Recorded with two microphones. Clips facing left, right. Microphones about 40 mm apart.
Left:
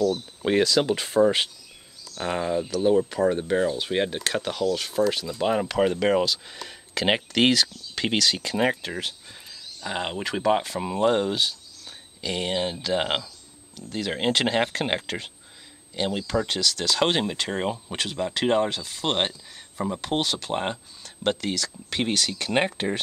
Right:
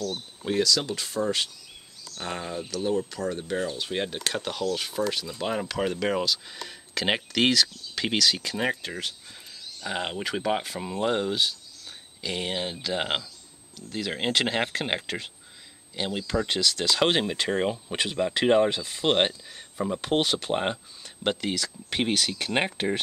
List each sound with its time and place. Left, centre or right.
0.6 s speech: left; by 4.2 s centre
4.2 s speech: centre
10.8 s speech: centre
16.3 s speech: centre
20.5 s speech: centre
22.4 s speech: centre